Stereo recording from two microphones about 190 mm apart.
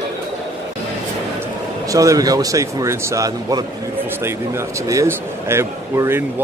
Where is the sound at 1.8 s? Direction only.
15° right (ahead or behind).